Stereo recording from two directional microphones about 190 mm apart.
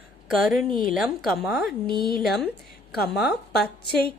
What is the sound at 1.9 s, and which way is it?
Speech, 25° right (ahead or behind).